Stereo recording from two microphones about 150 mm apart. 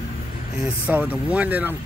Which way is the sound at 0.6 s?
10° right (ahead or behind).